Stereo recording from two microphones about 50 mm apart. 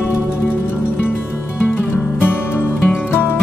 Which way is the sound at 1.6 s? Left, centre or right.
Left.